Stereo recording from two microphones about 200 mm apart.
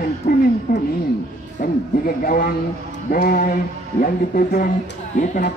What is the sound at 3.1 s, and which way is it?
Speech, 45° left (ahead or behind).